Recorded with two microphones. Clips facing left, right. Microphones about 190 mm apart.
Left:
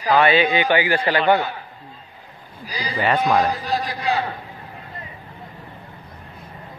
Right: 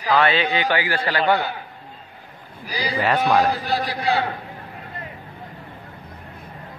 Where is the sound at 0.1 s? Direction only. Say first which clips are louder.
Left 3 dB; 10° left (ahead or behind).